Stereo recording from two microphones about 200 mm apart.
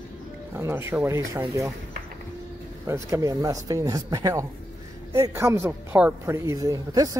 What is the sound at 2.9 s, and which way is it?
A woman's voice, 15° right (ahead or behind).